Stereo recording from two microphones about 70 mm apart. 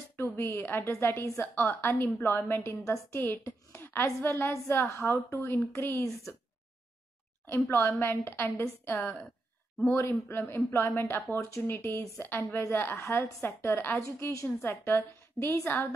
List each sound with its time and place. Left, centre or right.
0.1 s a woman's voice: left
3.2 s a woman's voice: left
5.8 s speech: left
7.4 s a woman's voice: left